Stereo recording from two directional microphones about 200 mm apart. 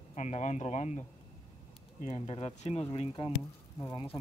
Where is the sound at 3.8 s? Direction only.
15° left (ahead or behind).